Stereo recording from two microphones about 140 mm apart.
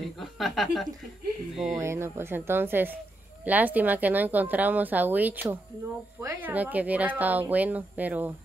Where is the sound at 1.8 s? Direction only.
20° right (ahead or behind).